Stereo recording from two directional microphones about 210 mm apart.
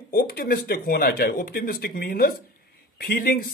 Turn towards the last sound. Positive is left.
turn(degrees=45)  # may be behind; listen again after turning